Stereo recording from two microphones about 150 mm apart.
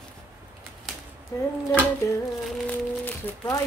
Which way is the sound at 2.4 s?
10° left (ahead or behind).